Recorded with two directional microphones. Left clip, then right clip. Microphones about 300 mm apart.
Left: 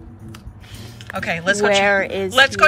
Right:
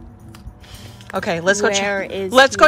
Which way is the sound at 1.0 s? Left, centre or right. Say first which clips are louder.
Right 2 dB; centre.